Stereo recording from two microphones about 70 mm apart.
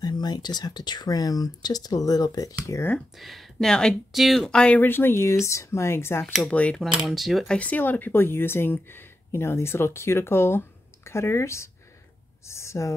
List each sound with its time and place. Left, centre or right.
0.0 s speech: left
3.2 s speech: centre
4.5 s speech: centre
4.7 s speech: left
6.2 s speech: centre
6.5 s speech: centre
7.1 s speech: centre
7.4 s speech: centre; by 12.9 s left